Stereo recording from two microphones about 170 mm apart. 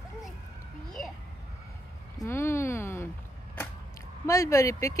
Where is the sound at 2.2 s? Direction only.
15° left (ahead or behind).